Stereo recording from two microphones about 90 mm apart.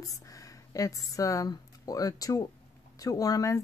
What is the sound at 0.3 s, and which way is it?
Speech, 40° left (ahead or behind).